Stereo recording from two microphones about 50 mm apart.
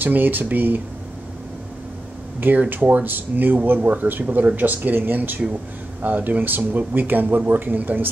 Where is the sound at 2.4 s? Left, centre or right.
Right.